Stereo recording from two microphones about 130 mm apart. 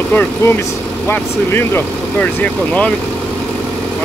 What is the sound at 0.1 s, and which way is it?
Speech, 15° left (ahead or behind).